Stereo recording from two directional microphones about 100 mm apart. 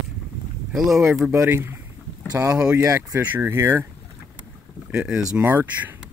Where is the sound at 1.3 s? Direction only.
25° right (ahead or behind).